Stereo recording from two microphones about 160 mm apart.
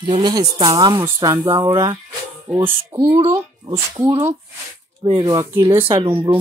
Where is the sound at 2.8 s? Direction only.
25° right (ahead or behind).